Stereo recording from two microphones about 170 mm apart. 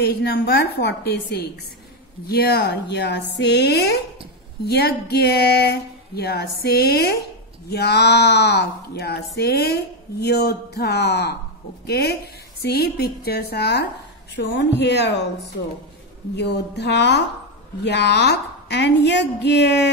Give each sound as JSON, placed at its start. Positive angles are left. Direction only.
{"t": 0.0, "sound": "a woman's voice", "side_deg": 70}
{"t": 4.6, "sound": "speech", "side_deg": 70}
{"t": 14.3, "sound": "a woman's voice", "side_deg": 90}
{"t": 16.3, "sound": "a woman's voice", "side_deg": 80}